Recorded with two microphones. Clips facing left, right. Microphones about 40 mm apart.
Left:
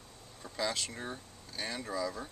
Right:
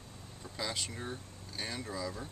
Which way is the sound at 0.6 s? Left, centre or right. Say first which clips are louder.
Left 3 dB; centre.